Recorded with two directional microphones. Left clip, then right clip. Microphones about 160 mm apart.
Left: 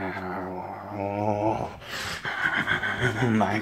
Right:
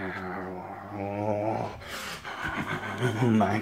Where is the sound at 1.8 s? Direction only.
5° left (ahead or behind); by 3.6 s 15° right (ahead or behind).